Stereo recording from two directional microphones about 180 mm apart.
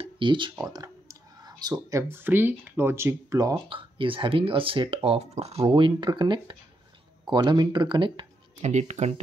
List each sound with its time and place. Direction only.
0.0 s speech: 25° right (ahead or behind)
8.5 s speech: 40° right (ahead or behind)